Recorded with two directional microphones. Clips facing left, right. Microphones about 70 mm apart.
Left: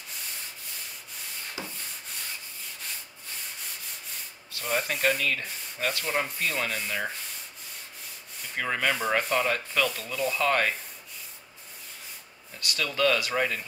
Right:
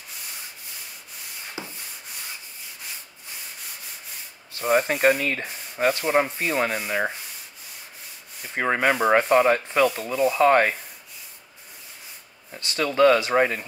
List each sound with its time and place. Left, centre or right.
1.6 s rub: centre
4.5 s rub: right
6.9 s sanding: right
8.4 s rub: right
12.5 s rub: right